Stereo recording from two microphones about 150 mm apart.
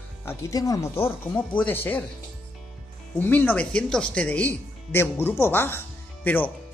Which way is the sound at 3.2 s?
10° left (ahead or behind).